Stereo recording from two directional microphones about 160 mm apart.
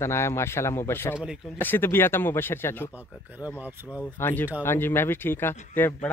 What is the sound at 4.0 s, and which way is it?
Speech, 10° left (ahead or behind).